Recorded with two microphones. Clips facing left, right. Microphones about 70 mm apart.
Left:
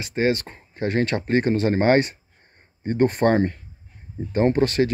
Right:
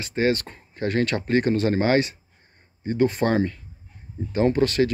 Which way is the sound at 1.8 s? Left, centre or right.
Left.